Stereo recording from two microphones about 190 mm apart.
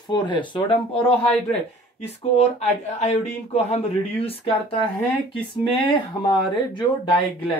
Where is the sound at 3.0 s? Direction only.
35° left (ahead or behind).